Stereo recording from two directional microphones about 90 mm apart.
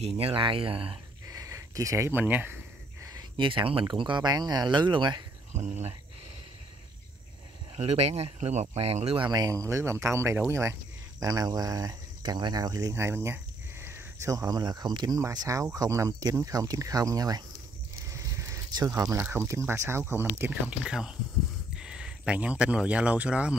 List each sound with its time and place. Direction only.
0.1 s speech: 80° right
1.3 s a sound: 40° right (ahead or behind)
2.0 s speech: 20° right (ahead or behind)
3.0 s a sound: 40° right (ahead or behind)
3.3 s speech: 70° right (ahead or behind)
3.8 s speech: 60° right (ahead or behind)
7.7 s speech: 90° right
9.3 s speech: 45° right (ahead or behind); by 14.3 s 25° right (ahead or behind)
14.3 s speech: 45° right (ahead or behind)
18.1 s a sound: 35° right (ahead or behind)
18.9 s speech: 35° right (ahead or behind)
19.1 s speech: 25° right (ahead or behind)
20.8 s speech: 5° right (ahead or behind)